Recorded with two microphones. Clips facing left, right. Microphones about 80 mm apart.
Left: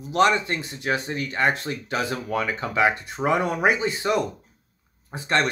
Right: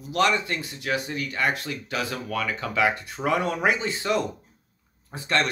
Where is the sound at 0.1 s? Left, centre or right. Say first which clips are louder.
Left 3 dB; left.